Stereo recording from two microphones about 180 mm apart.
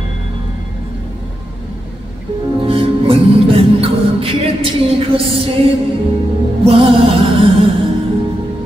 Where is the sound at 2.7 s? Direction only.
30° right (ahead or behind).